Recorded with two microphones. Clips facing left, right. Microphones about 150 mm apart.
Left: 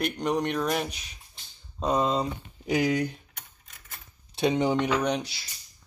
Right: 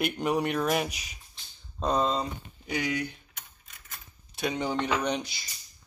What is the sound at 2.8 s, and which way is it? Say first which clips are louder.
Speech: left 5 dB; 45° left (ahead or behind).